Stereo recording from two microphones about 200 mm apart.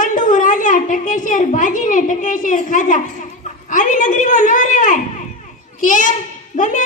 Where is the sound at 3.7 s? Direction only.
40° left (ahead or behind).